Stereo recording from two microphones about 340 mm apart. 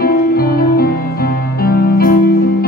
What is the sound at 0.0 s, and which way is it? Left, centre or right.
Music, left.